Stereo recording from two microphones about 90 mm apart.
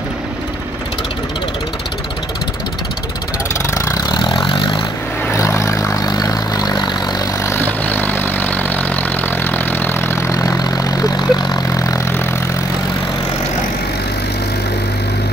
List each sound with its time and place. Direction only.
3.7 s vehicle: 35° left (ahead or behind)
4.2 s vehicle: 55° left (ahead or behind)
5.6 s vehicle: 35° left (ahead or behind)
6.0 s vehicle: 45° left (ahead or behind)
7.4 s vehicle: 20° left (ahead or behind); by 11.8 s 50° left (ahead or behind)
11.8 s vehicle: 35° left (ahead or behind)